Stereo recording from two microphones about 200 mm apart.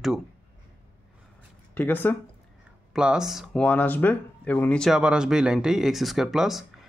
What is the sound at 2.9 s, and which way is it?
Speech, 5° right (ahead or behind).